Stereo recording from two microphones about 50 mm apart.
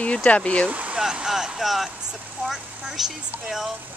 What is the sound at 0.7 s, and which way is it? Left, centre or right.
Speech, right.